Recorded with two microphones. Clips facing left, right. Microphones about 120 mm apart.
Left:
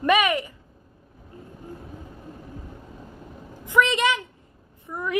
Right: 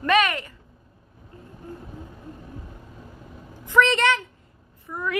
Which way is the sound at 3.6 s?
15° left (ahead or behind).